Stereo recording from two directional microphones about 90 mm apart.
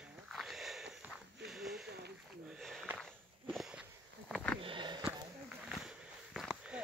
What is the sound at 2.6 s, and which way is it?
Sniff, centre (ahead or behind).